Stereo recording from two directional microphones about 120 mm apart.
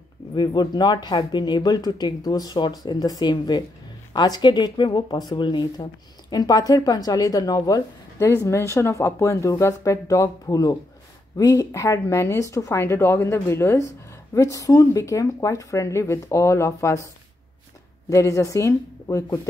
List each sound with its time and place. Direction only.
0.4 s speech: 35° left (ahead or behind)
18.1 s speech: 25° left (ahead or behind)